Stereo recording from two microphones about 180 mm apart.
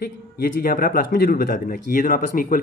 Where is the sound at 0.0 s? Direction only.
55° left (ahead or behind).